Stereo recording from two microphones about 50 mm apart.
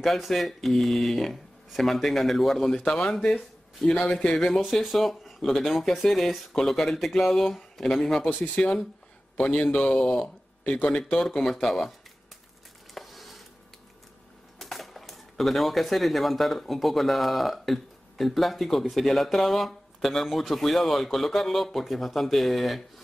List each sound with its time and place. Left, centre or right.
0.0 s speech: centre
4.6 s speech: centre
8.4 s speech: centre
11.1 s speech: centre
12.9 s a sound: centre
14.6 s speech: centre